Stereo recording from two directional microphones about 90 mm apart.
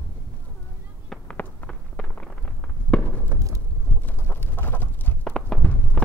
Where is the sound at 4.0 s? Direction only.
25° left (ahead or behind).